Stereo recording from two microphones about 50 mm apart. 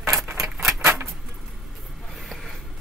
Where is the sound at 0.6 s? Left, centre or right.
Right.